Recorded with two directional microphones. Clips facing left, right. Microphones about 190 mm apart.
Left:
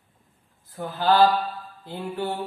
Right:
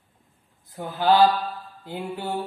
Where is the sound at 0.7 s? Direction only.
20° right (ahead or behind).